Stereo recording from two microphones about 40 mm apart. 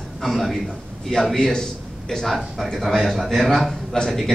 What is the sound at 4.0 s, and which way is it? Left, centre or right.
Speech, centre.